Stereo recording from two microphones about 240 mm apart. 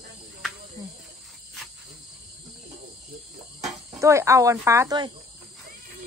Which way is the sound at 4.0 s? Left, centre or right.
Centre.